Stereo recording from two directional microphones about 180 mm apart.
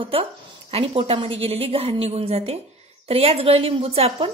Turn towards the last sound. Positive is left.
turn(degrees=-30)  # may be behind; listen again after turning